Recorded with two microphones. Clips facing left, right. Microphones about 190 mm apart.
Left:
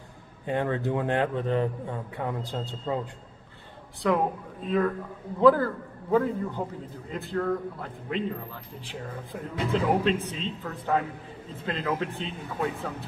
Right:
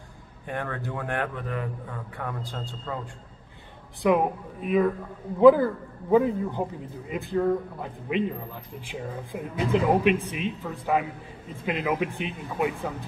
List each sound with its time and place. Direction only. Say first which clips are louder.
0.5 s a man's voice: left 5 dB; 20° left (ahead or behind)
4.0 s a man's voice: right 3 dB; 15° right (ahead or behind)